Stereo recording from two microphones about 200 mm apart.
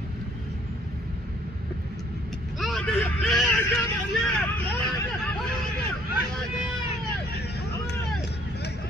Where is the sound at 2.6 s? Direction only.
Centre (ahead or behind).